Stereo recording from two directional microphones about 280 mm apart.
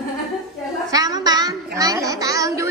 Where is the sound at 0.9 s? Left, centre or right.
Centre.